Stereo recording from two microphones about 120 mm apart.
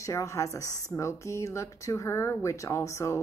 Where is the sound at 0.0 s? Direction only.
25° left (ahead or behind).